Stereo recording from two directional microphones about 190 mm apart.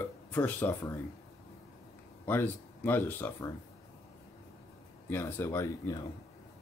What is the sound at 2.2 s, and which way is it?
Speech, 10° left (ahead or behind).